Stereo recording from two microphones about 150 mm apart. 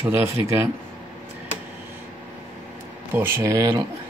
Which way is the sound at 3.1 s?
15° right (ahead or behind).